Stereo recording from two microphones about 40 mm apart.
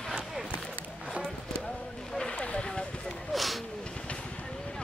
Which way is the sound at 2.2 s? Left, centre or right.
Left.